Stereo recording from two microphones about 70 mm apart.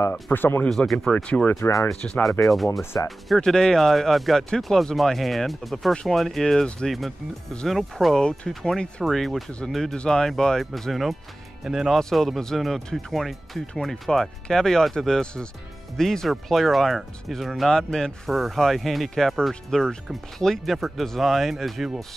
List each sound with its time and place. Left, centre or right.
0.1 s speech: left
0.7 s speech: centre
1.1 s speech: centre
2.4 s speech: centre